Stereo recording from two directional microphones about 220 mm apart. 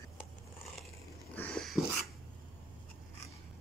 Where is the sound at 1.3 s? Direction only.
5° left (ahead or behind).